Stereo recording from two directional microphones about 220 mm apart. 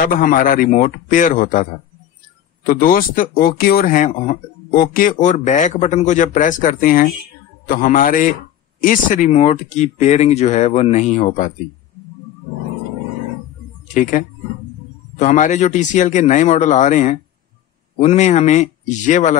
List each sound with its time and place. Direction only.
0.0 s speech: 40° left (ahead or behind)
15.1 s speech: 35° left (ahead or behind)